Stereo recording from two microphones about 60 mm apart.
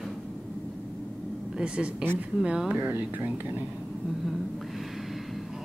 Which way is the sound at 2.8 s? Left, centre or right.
Right.